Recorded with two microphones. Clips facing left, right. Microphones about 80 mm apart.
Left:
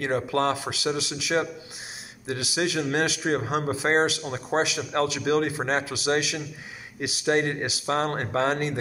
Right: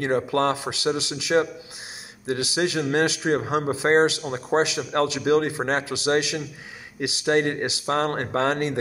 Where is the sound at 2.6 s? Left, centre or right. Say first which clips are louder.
Right 2 dB; right.